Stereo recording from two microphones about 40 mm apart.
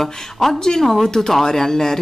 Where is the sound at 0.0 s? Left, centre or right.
Centre.